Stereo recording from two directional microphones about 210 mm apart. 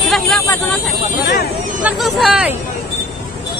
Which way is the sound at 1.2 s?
50° left (ahead or behind).